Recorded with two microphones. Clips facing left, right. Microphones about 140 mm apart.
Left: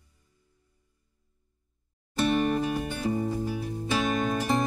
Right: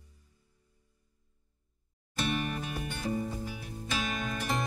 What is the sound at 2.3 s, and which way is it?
Music, 30° left (ahead or behind).